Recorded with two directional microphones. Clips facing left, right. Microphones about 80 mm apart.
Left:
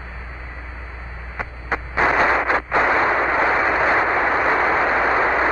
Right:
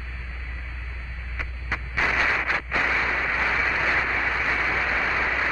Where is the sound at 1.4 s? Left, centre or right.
Left.